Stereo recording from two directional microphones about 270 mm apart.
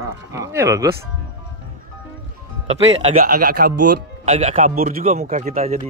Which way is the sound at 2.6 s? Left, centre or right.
Right.